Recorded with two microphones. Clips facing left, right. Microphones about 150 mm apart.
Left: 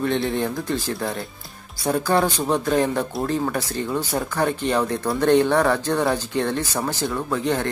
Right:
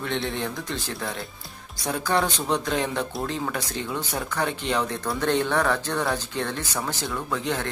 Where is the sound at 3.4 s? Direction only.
15° left (ahead or behind).